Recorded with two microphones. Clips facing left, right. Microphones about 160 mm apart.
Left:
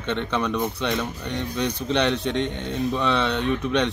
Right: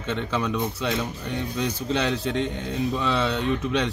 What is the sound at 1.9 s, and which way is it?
Speech, 65° left (ahead or behind).